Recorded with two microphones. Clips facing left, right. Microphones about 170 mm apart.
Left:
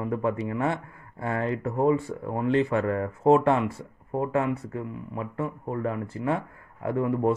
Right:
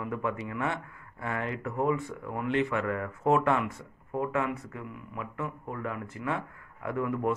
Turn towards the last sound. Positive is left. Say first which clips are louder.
# left 5 dB
turn(degrees=30)  # may be behind; listen again after turning